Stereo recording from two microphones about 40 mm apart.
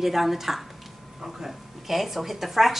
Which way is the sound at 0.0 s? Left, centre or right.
Centre.